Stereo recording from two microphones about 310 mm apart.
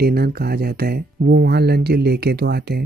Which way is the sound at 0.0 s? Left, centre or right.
Right.